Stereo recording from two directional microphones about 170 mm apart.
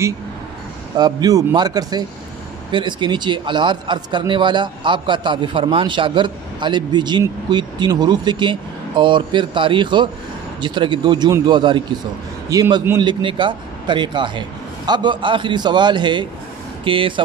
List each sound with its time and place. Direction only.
0.9 s a man's voice: 25° right (ahead or behind)